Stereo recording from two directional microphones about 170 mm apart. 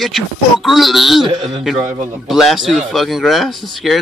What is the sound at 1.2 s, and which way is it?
Speech, 25° right (ahead or behind).